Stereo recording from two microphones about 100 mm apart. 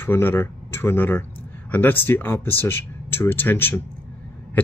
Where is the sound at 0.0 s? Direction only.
20° left (ahead or behind).